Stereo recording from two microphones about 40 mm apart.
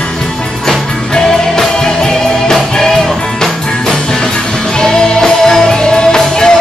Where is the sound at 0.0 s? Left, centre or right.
Centre.